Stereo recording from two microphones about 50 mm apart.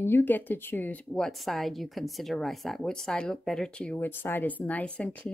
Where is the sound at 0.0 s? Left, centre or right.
Left.